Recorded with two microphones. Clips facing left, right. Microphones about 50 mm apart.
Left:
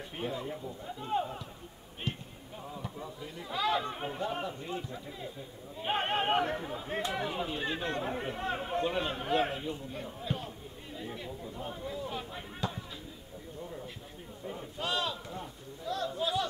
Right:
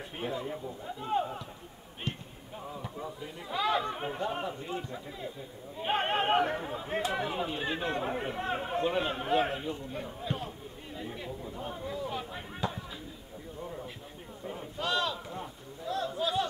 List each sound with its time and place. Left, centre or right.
0.2 s a man's voice: centre
2.1 s basketball bounce: centre
2.7 s speech: centre
11.0 s chatter: centre
14.4 s a sound: centre
14.8 s sheep: left
15.2 s a sound: centre